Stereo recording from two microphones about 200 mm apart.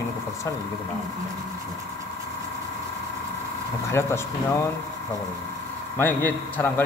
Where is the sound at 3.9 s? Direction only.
15° left (ahead or behind).